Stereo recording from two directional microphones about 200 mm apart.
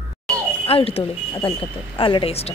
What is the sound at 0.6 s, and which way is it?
Speech, 30° left (ahead or behind).